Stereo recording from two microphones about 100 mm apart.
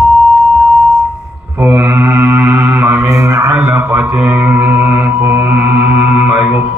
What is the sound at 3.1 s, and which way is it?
Mantra, 30° right (ahead or behind).